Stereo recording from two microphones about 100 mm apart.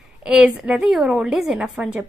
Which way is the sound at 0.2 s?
5° right (ahead or behind).